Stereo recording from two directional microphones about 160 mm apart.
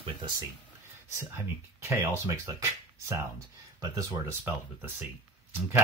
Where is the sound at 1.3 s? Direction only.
15° right (ahead or behind).